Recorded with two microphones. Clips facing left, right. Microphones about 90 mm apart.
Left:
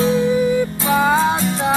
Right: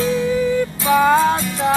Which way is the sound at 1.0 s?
5° left (ahead or behind).